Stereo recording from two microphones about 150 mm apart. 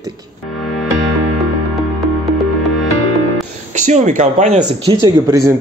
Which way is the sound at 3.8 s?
55° right (ahead or behind).